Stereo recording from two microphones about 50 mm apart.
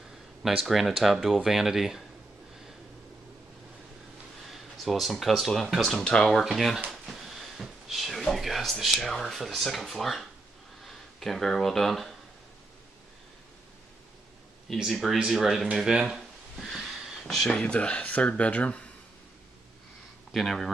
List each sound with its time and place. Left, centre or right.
0.4 s speech: centre
4.5 s speech: centre
5.9 s speech: centre
6.4 s speech: centre
6.9 s a sound: centre
8.3 s speech: centre
14.7 s speech: centre
16.7 s wheeze: centre
17.5 s speech: left
20.3 s speech: centre